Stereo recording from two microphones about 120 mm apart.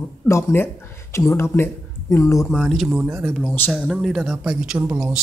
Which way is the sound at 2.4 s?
Centre (ahead or behind).